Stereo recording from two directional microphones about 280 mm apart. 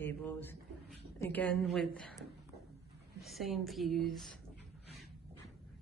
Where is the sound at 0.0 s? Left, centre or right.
Centre.